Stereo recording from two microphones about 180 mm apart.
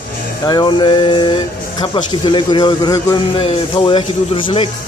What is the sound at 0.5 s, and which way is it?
Speech, 25° left (ahead or behind).